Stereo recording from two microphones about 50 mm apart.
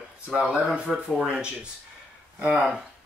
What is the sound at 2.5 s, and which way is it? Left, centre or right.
Speech, centre.